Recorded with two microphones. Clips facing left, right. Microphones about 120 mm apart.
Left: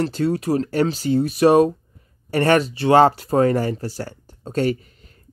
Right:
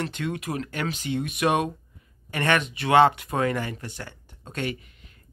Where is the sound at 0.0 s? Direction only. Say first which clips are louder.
Left 9 dB; 35° left (ahead or behind).